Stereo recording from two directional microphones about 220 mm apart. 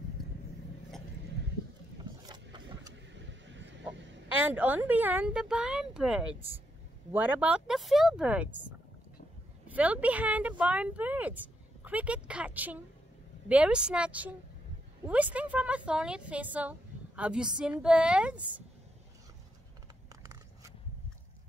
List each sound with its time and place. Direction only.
3.1 s vehicle: 55° right (ahead or behind)
4.5 s a woman's voice: 5° right (ahead or behind)